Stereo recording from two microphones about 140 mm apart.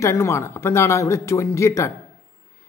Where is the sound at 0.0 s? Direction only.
20° left (ahead or behind).